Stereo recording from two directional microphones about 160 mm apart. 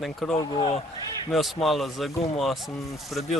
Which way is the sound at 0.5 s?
30° left (ahead or behind).